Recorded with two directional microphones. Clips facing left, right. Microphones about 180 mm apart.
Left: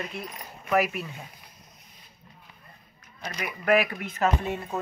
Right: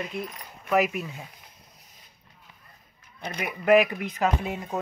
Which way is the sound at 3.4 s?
20° right (ahead or behind).